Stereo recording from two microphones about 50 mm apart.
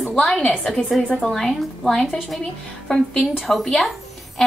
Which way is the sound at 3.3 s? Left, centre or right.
Centre.